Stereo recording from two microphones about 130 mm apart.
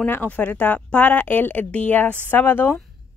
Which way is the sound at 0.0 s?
15° left (ahead or behind).